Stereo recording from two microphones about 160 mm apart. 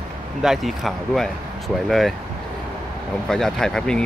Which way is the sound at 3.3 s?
Centre (ahead or behind).